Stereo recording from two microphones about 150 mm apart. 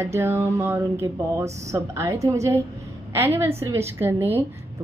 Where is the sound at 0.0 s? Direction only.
15° right (ahead or behind).